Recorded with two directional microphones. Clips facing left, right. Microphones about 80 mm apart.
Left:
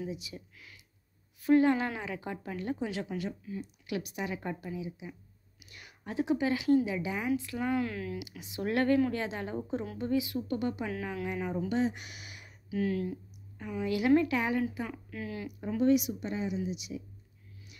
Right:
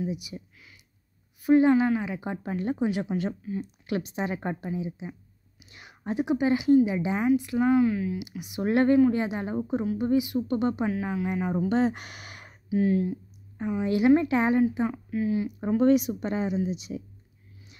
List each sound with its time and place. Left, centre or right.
0.0 s a woman's voice: centre
1.4 s a woman's voice: centre
2.1 s a woman's voice: right
3.2 s a woman's voice: right; by 8.2 s centre
8.2 s a woman's voice: right
10.9 s speech: centre
11.7 s speech: right
12.6 s a woman's voice: right
15.8 s speech: right